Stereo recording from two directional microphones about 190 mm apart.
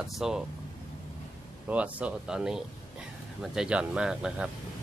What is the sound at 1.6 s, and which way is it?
Speech, 5° right (ahead or behind).